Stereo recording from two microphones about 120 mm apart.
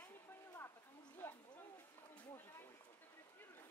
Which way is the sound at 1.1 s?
20° left (ahead or behind).